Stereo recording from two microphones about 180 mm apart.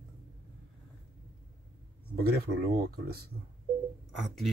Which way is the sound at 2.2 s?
60° right (ahead or behind).